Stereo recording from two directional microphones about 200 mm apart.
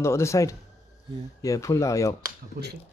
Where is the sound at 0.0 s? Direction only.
15° left (ahead or behind).